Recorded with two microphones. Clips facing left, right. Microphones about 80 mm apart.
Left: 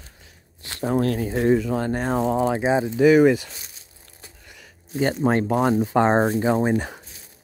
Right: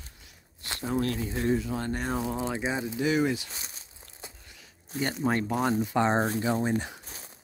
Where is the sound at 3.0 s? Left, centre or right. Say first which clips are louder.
Left 12 dB; left.